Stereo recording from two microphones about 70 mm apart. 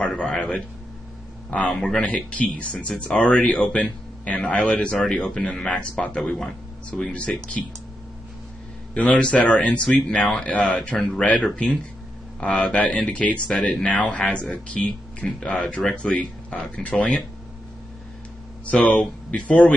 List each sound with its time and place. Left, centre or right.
0.0 s a sound: centre
1.7 s a man's voice: centre
8.9 s a man's voice: centre
11.0 s a man's voice: centre
18.7 s a man's voice: centre